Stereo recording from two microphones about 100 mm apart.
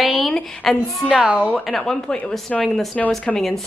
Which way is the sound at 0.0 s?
Centre (ahead or behind).